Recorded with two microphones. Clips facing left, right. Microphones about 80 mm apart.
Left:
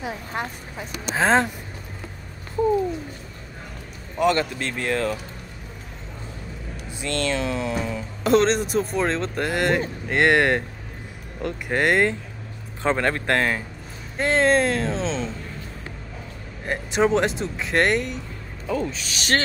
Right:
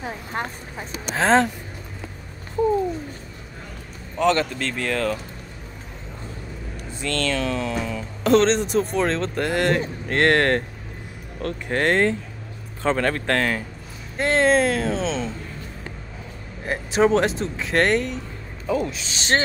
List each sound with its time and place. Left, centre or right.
0.3 s a sound: right
1.0 s speech: centre
4.2 s speech: centre
7.0 s speech: centre
8.2 s speech: centre; by 13.6 s left
14.1 s speech: centre
16.6 s speech: centre
18.7 s speech: centre
18.9 s speech: right